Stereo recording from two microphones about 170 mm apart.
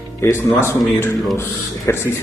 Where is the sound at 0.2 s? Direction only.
15° left (ahead or behind).